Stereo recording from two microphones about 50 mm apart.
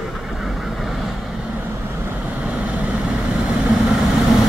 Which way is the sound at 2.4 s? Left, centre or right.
Right.